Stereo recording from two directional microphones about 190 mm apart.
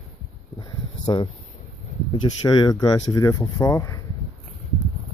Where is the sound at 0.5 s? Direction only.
20° left (ahead or behind).